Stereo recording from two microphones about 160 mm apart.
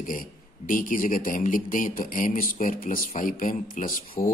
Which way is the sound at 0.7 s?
55° left (ahead or behind).